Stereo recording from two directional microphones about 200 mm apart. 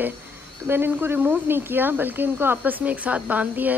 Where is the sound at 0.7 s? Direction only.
10° right (ahead or behind).